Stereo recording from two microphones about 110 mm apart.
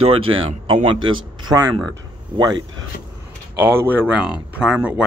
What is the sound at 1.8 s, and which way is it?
Speech, 35° right (ahead or behind).